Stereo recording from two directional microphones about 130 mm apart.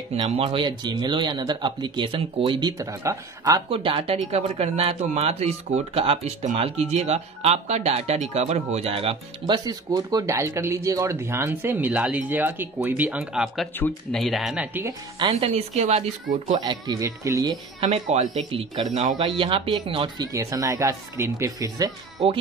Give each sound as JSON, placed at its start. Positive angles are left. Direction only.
{"t": 0.1, "sound": "speech", "side_deg": -45}
{"t": 2.8, "sound": "speech", "side_deg": -25}
{"t": 3.7, "sound": "speech", "side_deg": -45}
{"t": 9.7, "sound": "speech", "side_deg": -30}
{"t": 15.4, "sound": "speech", "side_deg": -60}
{"t": 16.6, "sound": "speech", "side_deg": -35}
{"t": 17.7, "sound": "speech", "side_deg": -55}
{"t": 20.3, "sound": "speech", "side_deg": -25}